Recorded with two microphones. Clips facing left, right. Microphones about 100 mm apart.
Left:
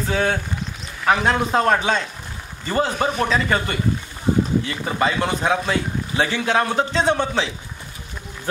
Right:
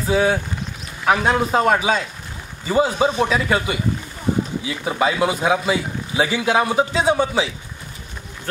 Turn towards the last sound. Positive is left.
turn(degrees=-5)  # may be behind; listen again after turning